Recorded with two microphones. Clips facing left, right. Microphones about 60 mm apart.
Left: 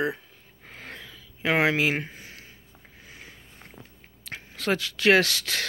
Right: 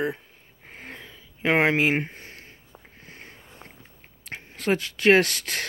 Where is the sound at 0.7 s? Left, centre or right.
Right.